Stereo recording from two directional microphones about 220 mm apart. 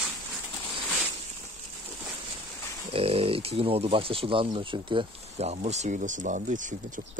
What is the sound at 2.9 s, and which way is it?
Speech, 25° right (ahead or behind).